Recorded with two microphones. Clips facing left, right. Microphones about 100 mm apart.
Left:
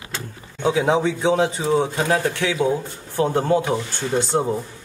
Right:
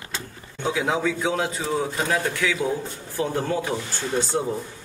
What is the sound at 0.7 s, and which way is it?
A man's voice, 25° left (ahead or behind).